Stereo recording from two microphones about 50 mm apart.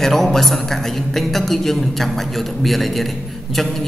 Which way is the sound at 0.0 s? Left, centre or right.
Centre.